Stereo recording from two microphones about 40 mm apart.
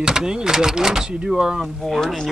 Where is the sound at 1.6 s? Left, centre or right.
Centre.